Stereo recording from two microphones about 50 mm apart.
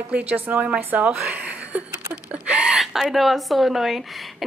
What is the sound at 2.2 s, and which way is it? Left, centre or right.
Gasp, right.